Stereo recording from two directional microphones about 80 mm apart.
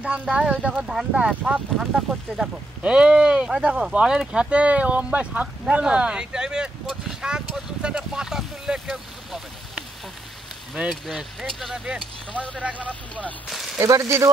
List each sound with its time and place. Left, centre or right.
0.0 s speech: centre
12.3 s speech: centre
13.5 s speech: centre
13.7 s speech: right